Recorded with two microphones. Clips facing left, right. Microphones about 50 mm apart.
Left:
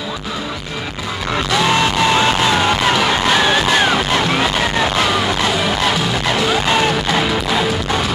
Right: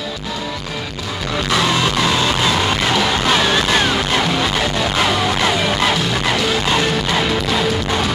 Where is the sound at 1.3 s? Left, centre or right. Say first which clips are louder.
Left 2 dB; left.